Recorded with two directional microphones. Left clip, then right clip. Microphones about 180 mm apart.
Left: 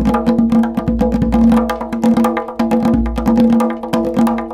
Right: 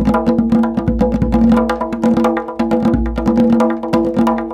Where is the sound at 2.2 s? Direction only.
25° right (ahead or behind).